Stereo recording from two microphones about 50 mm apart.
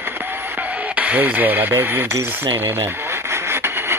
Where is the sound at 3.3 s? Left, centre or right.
Right.